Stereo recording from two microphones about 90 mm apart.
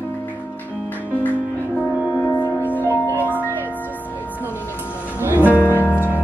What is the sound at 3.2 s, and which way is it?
Music, 20° right (ahead or behind).